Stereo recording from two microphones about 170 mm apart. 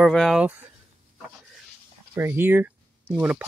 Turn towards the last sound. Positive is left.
turn(degrees=-10)  # may be behind; listen again after turning